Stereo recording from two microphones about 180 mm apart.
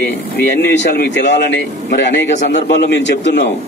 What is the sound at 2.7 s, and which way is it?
Speech, 80° left.